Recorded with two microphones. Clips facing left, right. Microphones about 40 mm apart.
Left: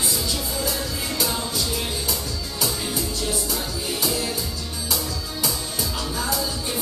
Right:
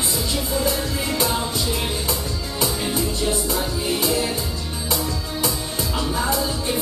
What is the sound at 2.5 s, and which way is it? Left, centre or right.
Music, centre.